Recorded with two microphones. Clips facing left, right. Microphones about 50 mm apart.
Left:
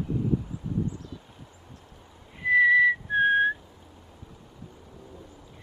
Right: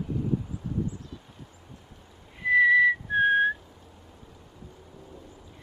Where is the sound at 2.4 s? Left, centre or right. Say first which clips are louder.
Even; centre.